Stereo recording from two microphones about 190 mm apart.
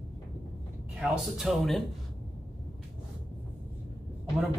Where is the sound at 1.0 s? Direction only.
5° right (ahead or behind).